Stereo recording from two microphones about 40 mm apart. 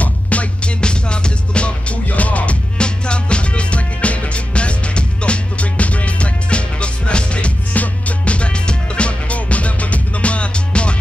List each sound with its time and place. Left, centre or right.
0.0 s music: left
0.8 s music: left
2.8 s music: left